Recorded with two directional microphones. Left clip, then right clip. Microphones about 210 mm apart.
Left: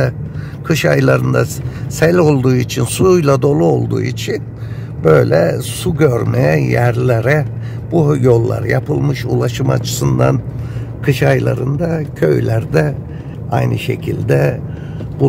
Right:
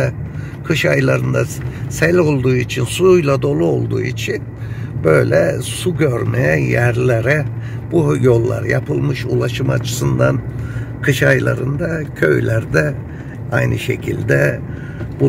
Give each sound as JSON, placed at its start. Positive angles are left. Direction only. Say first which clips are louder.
{"t": 0.7, "sound": "speech", "louder": "left 2 dB", "side_deg": 20}